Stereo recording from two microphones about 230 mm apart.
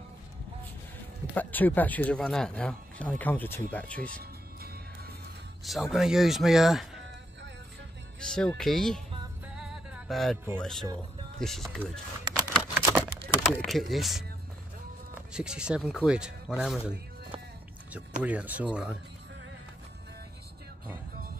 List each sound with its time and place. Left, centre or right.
1.3 s speech: centre
4.1 s music: right
5.6 s speech: centre
8.2 s speech: centre
9.6 s music: centre
10.6 s speech: centre
12.4 s computer keyboard: centre
13.6 s speech: centre
15.3 s speech: centre
18.2 s speech: centre